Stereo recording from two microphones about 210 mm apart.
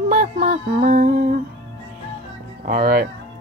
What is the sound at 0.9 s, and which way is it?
Humming, 45° right (ahead or behind).